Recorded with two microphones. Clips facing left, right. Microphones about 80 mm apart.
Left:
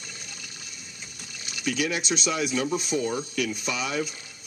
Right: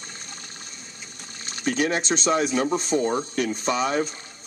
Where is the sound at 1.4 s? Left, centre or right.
Right.